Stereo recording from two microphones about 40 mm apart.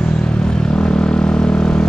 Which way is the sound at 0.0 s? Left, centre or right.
Left.